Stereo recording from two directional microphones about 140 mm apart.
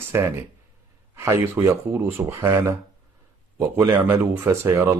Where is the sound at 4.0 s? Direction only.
15° right (ahead or behind).